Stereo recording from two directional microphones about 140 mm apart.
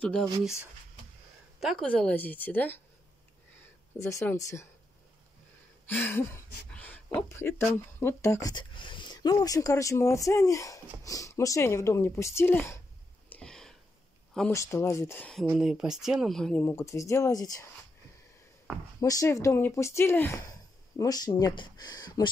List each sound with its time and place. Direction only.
0.0 s speech: 5° left (ahead or behind)
1.6 s a woman's voice: centre (ahead or behind)
4.0 s speech: 20° left (ahead or behind)
5.9 s a woman's voice: 15° left (ahead or behind)
6.7 s a sound: 10° left (ahead or behind)
7.2 s speech: 20° left (ahead or behind)
13.3 s a sound: 5° left (ahead or behind)
14.5 s speech: 20° left (ahead or behind)
15.5 s speech: centre (ahead or behind)
16.6 s speech: 20° left (ahead or behind)
18.9 s speech: 25° left (ahead or behind)